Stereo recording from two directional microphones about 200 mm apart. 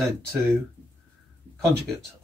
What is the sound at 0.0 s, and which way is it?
Speech, centre (ahead or behind).